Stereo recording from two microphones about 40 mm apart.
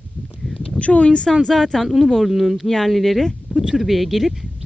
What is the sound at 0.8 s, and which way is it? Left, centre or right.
Speech, left.